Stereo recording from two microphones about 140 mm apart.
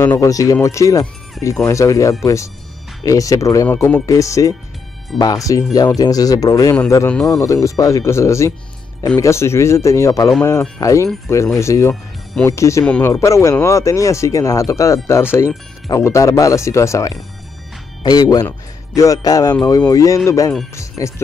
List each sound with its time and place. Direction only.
0.0 s speech: 25° left (ahead or behind)
12.8 s speech: 10° left (ahead or behind)
13.1 s speech: 20° left (ahead or behind)